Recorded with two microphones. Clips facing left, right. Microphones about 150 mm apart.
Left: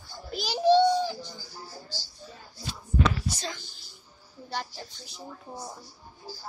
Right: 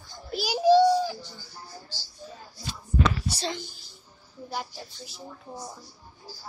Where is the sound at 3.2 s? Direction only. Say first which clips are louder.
Right 3 dB; 30° right (ahead or behind).